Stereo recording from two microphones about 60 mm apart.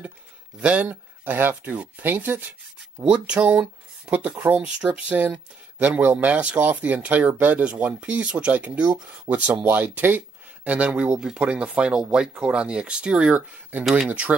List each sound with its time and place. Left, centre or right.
0.6 s speech: right
3.0 s speech: centre